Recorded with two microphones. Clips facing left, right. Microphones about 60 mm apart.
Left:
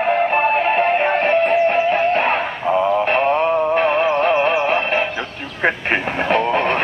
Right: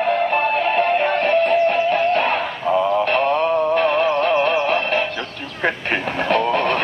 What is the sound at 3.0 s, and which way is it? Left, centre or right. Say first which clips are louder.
Synthetic singing: left 1 dB; left.